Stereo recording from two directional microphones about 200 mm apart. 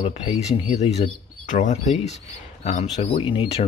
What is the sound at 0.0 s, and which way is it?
Speech, 35° left (ahead or behind).